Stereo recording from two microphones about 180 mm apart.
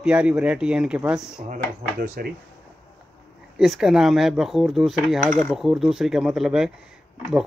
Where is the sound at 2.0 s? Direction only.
60° right (ahead or behind).